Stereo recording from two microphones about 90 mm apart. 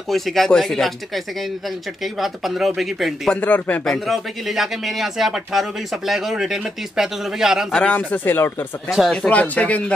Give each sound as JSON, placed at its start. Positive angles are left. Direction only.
{"t": 0.1, "sound": "speech", "side_deg": 5}
{"t": 3.3, "sound": "speech", "side_deg": 15}
{"t": 3.8, "sound": "speech", "side_deg": 0}
{"t": 7.7, "sound": "speech", "side_deg": 15}
{"t": 8.8, "sound": "speech", "side_deg": 0}
{"t": 9.1, "sound": "speech", "side_deg": 10}